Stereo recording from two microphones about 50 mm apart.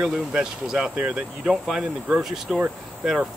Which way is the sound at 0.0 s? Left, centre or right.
Centre.